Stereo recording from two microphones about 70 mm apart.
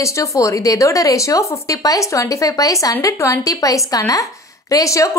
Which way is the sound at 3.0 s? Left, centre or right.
Left.